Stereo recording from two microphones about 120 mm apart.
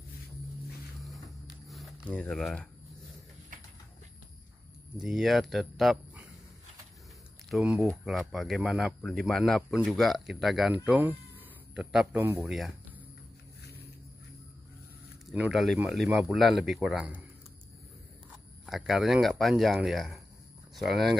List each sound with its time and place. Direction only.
1.0 s a sound: centre (ahead or behind)
2.0 s speech: 10° left (ahead or behind)
4.9 s speech: 5° right (ahead or behind)
7.4 s speech: 5° right (ahead or behind)
10.7 s speech: 15° right (ahead or behind)
12.4 s speech: centre (ahead or behind)
15.3 s speech: 10° right (ahead or behind)
18.7 s speech: centre (ahead or behind)